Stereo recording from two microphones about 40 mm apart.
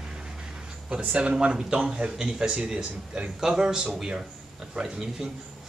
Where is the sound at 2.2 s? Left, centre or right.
Centre.